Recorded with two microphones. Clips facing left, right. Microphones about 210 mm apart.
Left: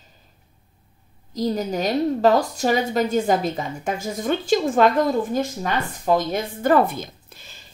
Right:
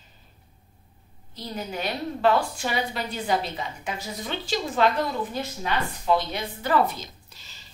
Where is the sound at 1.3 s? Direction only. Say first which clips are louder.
Left 10 dB; 40° left (ahead or behind).